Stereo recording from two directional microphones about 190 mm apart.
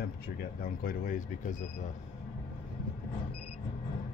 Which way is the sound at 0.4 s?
50° left (ahead or behind).